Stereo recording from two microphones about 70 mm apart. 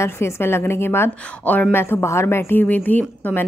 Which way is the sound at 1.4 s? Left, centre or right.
Left.